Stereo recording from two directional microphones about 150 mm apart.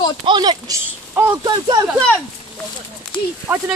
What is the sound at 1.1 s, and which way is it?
Speech, 15° right (ahead or behind).